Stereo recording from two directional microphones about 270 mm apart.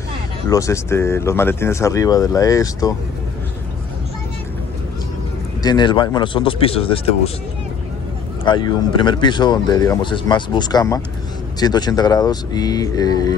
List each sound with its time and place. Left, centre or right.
0.5 s speech: centre
5.6 s speech: centre
8.5 s speech: centre